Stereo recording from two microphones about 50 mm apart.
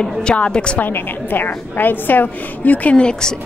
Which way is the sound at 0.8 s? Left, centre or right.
Left.